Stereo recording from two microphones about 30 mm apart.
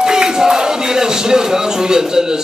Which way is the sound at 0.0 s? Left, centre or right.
Right.